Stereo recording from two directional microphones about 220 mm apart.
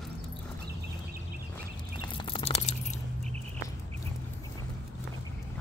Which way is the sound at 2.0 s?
25° left (ahead or behind).